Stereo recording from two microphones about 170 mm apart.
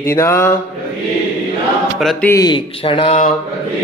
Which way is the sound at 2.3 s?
25° left (ahead or behind).